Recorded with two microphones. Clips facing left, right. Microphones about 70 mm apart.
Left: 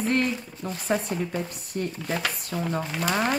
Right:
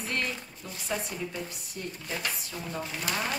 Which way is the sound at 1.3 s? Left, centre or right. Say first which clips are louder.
Left 6 dB; left.